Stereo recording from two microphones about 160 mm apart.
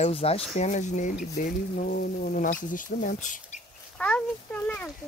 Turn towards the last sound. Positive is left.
turn(degrees=10)  # may be behind; listen again after turning